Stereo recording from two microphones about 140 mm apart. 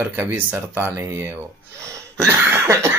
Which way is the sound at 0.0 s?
15° right (ahead or behind).